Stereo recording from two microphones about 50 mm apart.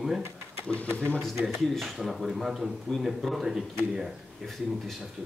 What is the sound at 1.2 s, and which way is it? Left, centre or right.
Speech, centre.